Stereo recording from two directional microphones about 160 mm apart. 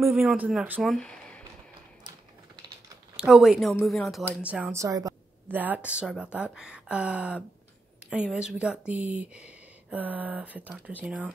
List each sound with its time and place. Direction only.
0.1 s speech: centre (ahead or behind)
0.9 s a sound: 5° left (ahead or behind)
3.2 s speech: 5° right (ahead or behind)
4.7 s a woman's voice: 20° right (ahead or behind)
5.5 s speech: 10° right (ahead or behind)